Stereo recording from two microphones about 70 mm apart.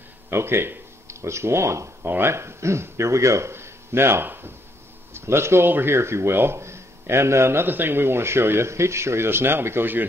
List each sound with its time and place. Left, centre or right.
0.3 s speech: right